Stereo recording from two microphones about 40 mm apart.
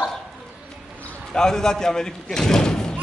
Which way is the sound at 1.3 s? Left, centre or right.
Centre.